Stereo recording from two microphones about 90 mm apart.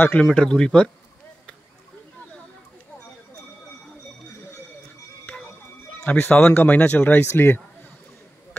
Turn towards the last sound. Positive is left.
turn(degrees=25)  # may be behind; listen again after turning